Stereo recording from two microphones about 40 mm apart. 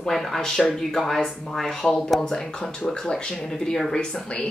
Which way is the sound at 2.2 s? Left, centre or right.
Centre.